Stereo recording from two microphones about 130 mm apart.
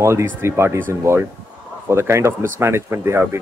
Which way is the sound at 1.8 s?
20° right (ahead or behind).